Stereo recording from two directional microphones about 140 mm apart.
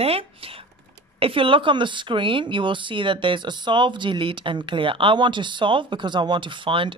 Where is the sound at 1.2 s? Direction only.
40° right (ahead or behind).